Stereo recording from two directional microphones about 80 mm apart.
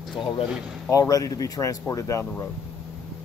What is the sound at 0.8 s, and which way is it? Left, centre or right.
Speech, left.